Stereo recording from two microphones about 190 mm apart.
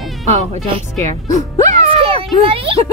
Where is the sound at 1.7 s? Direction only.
35° right (ahead or behind).